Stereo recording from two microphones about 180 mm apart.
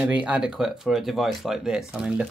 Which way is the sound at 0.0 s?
5° right (ahead or behind).